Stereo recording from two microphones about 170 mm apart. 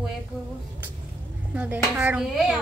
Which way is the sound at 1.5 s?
10° right (ahead or behind).